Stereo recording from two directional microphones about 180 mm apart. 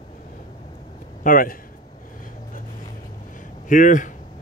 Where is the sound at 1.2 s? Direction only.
50° left (ahead or behind).